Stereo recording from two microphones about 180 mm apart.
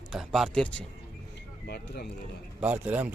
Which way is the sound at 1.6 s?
60° left (ahead or behind).